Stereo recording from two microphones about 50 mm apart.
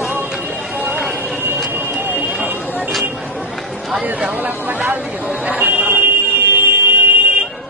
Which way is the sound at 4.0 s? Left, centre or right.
Right.